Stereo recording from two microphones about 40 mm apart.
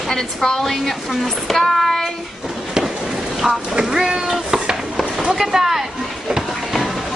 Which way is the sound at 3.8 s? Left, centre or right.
Centre.